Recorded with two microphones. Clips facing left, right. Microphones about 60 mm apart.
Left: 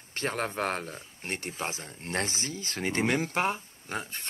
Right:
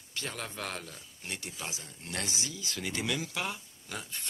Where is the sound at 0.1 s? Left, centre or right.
Left.